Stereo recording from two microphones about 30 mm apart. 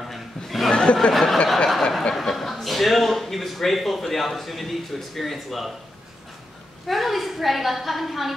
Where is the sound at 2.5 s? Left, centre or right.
Centre.